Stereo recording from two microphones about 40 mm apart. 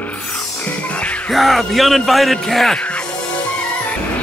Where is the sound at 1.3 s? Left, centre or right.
Centre.